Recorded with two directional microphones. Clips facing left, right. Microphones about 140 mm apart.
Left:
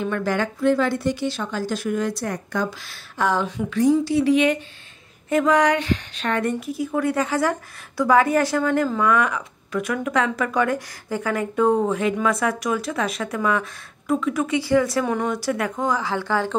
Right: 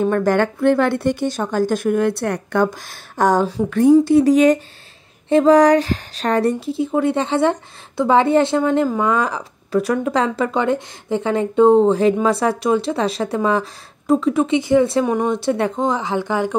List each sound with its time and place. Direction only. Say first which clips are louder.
0.0 s speech: right 7 dB; 45° right (ahead or behind); by 2.7 s 65° right (ahead or behind)
3.2 s speech: right 6 dB; 45° right (ahead or behind)
3.7 s a woman's voice: right 7 dB; 55° right (ahead or behind); by 16.5 s 15° right (ahead or behind)